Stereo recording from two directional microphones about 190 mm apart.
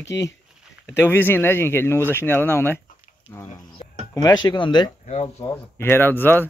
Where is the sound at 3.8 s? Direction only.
35° left (ahead or behind).